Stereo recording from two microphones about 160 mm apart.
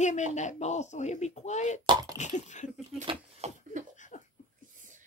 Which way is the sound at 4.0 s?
50° left (ahead or behind).